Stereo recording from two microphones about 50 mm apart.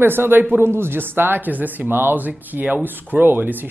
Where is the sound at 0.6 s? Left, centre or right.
Right.